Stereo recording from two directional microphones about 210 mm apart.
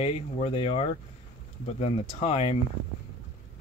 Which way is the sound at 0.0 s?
30° left (ahead or behind).